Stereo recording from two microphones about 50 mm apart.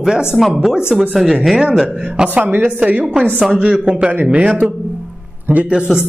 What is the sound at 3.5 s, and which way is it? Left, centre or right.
Speech, centre.